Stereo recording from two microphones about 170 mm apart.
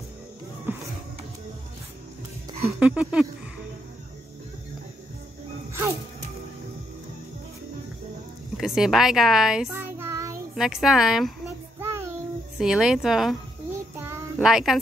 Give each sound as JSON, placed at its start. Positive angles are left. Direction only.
{"t": 0.7, "sound": "a sound", "side_deg": -10}
{"t": 2.6, "sound": "speech", "side_deg": -5}
{"t": 5.7, "sound": "music", "side_deg": -15}
{"t": 8.5, "sound": "a woman's voice", "side_deg": 0}
{"t": 9.7, "sound": "child singing", "side_deg": -15}
{"t": 10.5, "sound": "a woman's voice", "side_deg": 0}
{"t": 12.5, "sound": "a woman's voice", "side_deg": -5}
{"t": 14.4, "sound": "a woman's voice", "side_deg": 0}